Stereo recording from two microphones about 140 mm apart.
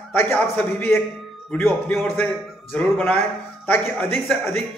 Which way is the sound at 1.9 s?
5° left (ahead or behind).